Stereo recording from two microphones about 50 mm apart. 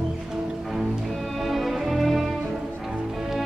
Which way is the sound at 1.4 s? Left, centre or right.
Centre.